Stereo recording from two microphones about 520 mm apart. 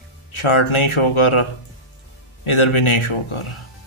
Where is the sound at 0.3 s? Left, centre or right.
Left.